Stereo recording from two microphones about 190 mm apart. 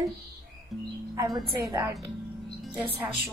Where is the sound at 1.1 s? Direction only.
20° right (ahead or behind).